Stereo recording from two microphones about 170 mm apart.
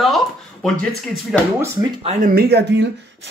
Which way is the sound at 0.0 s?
Centre (ahead or behind).